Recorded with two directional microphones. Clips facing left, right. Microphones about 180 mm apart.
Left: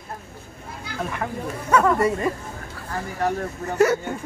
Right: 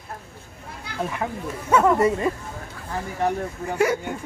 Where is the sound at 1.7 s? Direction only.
20° right (ahead or behind).